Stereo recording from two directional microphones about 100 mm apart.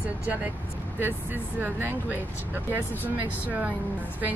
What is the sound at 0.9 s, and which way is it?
Speech, 20° right (ahead or behind).